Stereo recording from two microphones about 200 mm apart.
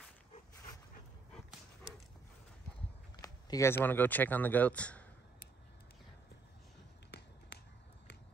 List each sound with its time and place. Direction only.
3.2 s speech: 15° left (ahead or behind)
7.1 s finger snapping: 60° left (ahead or behind)